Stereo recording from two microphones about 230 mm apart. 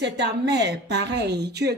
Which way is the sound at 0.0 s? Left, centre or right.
Right.